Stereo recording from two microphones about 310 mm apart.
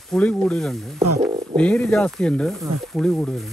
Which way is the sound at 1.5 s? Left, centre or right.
Centre.